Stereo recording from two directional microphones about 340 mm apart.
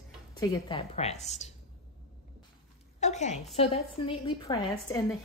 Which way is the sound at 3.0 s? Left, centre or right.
Centre.